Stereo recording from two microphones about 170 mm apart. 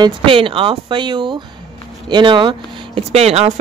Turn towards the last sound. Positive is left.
turn(degrees=-35)  # may be behind; listen again after turning